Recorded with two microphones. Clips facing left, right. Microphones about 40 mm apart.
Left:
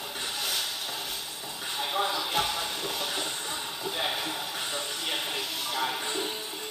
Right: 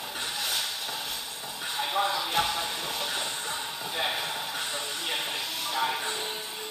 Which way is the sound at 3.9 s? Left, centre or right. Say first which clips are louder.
Right 1 dB; centre.